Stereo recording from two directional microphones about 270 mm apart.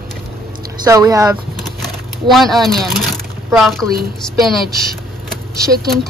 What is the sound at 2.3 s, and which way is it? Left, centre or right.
Speech, centre.